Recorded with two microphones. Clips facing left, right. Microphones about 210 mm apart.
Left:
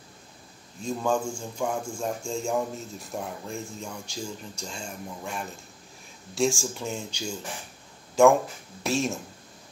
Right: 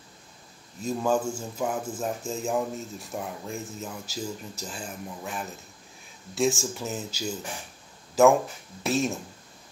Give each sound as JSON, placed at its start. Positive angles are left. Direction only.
{"t": 0.8, "sound": "speech", "side_deg": -5}
{"t": 8.8, "sound": "speech", "side_deg": 0}